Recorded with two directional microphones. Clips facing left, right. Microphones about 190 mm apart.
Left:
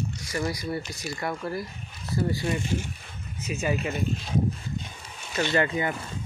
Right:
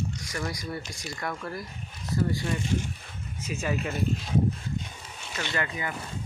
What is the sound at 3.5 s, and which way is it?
Speech, 10° left (ahead or behind).